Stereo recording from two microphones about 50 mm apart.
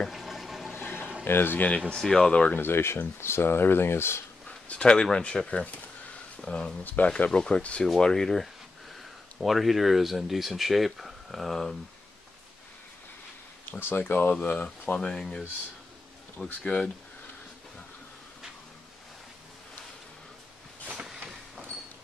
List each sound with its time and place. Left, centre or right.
0.1 s water: centre
0.7 s water: left
1.2 s speech: left
1.9 s speech: centre
2.5 s speech: left
4.5 s speech: left
6.8 s speech: left
7.2 s speech: centre
7.8 s speech: centre
9.4 s speech: centre
13.7 s speech: left
15.0 s speech: centre
16.6 s speech: left
20.9 s a sound: centre